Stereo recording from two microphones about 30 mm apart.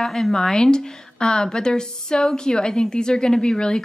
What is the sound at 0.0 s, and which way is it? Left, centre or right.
A woman's voice, centre.